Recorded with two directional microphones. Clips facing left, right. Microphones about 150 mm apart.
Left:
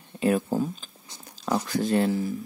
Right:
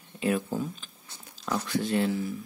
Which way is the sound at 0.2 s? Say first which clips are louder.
Left 4 dB; 40° left (ahead or behind).